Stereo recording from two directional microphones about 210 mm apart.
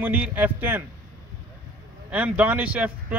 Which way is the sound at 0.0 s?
10° right (ahead or behind).